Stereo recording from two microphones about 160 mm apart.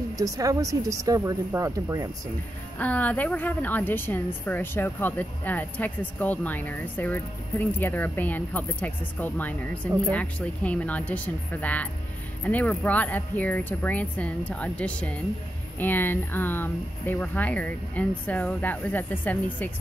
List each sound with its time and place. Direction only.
0.2 s speech: 20° right (ahead or behind)
2.8 s a woman's voice: 10° left (ahead or behind)